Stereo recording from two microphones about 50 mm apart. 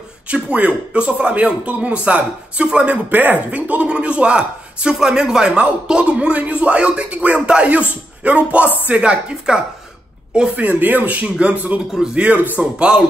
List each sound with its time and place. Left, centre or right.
0.3 s speech: right
3.1 s speech: right
10.5 s speech: right
11.9 s a man's voice: centre
12.5 s speech: right